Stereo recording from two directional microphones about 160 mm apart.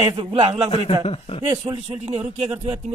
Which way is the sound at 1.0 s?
40° left (ahead or behind).